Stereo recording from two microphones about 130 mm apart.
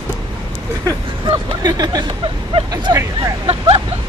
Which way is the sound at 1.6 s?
30° right (ahead or behind).